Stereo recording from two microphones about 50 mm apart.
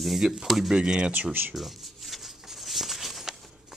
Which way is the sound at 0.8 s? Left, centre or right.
Centre.